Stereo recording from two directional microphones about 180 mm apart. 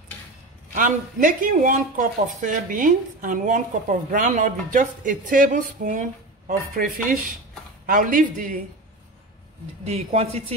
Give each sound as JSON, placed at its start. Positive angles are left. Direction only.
{"t": 0.7, "sound": "speech", "side_deg": -45}
{"t": 9.8, "sound": "speech", "side_deg": -35}